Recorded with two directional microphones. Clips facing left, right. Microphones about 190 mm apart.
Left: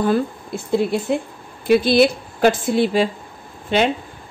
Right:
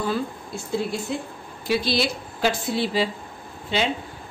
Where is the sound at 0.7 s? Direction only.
60° left (ahead or behind).